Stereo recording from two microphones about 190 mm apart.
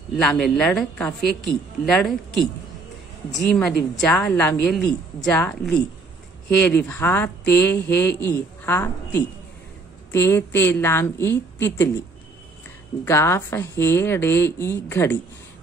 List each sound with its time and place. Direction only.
0.2 s a woman's voice: centre (ahead or behind)
13.0 s a woman's voice: 15° left (ahead or behind)